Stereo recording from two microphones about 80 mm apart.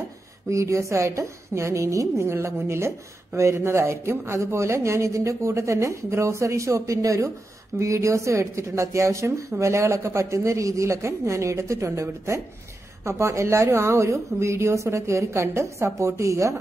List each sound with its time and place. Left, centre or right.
0.5 s speech: right